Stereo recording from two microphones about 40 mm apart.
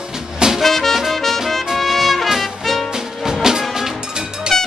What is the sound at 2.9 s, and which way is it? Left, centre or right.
Music, centre.